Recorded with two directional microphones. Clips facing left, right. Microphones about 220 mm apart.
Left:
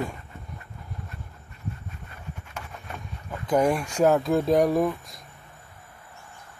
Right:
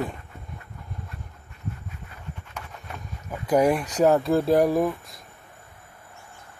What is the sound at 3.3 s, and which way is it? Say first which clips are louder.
Speech: right 2 dB; 10° right (ahead or behind).